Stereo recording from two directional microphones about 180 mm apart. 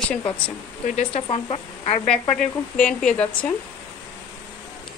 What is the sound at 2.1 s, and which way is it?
Speech, 5° left (ahead or behind).